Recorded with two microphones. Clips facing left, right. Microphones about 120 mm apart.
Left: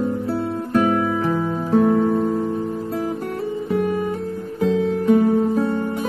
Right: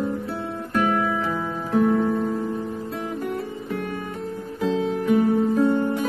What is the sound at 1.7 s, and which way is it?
Music, 35° left (ahead or behind).